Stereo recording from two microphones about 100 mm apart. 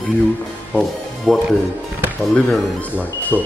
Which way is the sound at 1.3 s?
Centre (ahead or behind).